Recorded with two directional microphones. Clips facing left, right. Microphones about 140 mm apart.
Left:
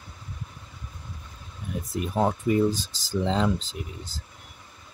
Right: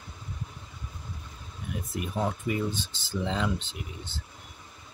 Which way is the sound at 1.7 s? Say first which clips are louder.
Left 3 dB; 35° left (ahead or behind).